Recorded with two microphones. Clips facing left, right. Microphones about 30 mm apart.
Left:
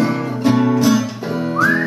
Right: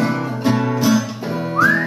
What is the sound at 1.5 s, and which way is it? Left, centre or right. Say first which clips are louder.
Whistling: right 1 dB; centre.